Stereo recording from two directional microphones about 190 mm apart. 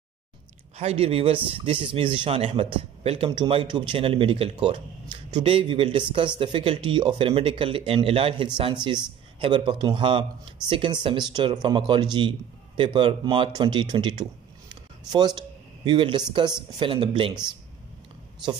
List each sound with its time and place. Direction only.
0.7 s a man's voice: 30° right (ahead or behind)